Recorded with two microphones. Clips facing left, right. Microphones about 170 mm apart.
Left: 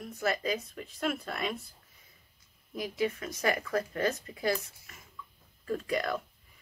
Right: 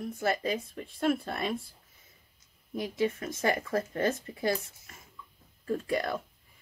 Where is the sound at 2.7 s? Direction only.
25° right (ahead or behind).